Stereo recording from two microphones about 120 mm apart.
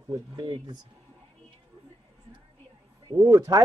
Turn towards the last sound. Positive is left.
turn(degrees=-30)  # may be behind; listen again after turning